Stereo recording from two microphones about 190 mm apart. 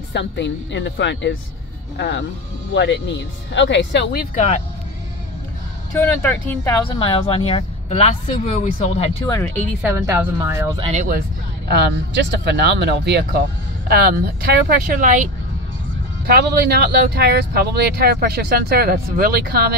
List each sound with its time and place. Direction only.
0.1 s speech: 65° left (ahead or behind)
5.9 s speech: 10° left (ahead or behind)
6.9 s speech: 30° left (ahead or behind)
9.8 s speech: 10° right (ahead or behind)
10.8 s speech: 35° right (ahead or behind)
11.1 s speech: 55° right (ahead or behind)
16.3 s speech: 55° right (ahead or behind)